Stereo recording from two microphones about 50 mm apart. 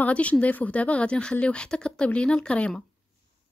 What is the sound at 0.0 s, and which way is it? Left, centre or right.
Speech, left.